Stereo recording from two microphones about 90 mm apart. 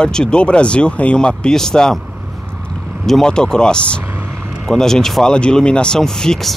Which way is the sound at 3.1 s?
5° left (ahead or behind).